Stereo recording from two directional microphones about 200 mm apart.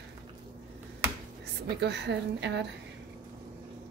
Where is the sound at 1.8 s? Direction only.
60° right (ahead or behind).